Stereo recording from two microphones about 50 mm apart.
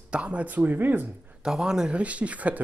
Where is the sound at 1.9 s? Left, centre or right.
Right.